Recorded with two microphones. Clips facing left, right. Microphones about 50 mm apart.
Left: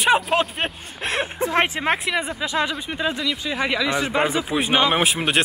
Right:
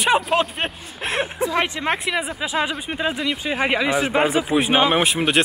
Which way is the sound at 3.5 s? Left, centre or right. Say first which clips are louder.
Right 3 dB; right.